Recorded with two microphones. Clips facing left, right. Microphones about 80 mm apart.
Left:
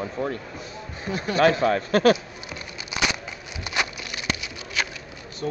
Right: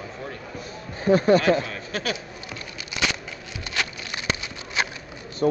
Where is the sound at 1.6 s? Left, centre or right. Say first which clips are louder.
Left 9 dB; left.